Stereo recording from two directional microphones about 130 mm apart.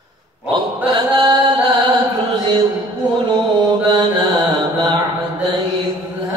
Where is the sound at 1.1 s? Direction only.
30° right (ahead or behind).